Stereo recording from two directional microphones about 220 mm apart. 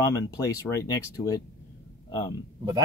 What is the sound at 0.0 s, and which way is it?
Speech, 15° left (ahead or behind).